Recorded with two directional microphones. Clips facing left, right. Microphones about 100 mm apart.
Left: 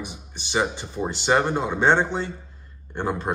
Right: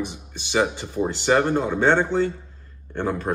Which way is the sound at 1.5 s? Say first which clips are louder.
Right 1 dB; 20° left (ahead or behind).